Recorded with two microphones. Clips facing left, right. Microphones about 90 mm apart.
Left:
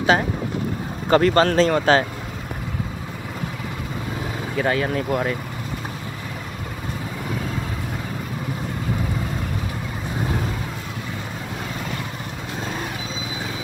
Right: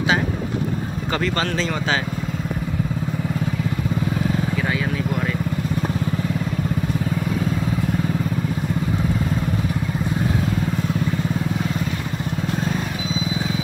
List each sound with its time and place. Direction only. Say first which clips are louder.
1.1 s speech: left 8 dB; 40° left (ahead or behind)
4.6 s vehicle: left 2 dB; 40° left (ahead or behind)